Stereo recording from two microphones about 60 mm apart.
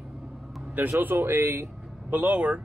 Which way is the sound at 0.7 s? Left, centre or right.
Right.